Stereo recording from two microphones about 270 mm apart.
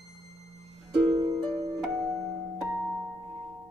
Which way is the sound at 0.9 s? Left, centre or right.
Centre.